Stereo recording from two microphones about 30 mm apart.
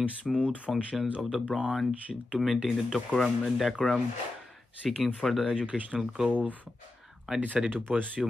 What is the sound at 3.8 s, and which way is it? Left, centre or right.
Speech, centre.